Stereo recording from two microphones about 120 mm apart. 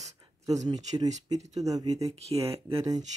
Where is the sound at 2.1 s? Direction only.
60° right (ahead or behind).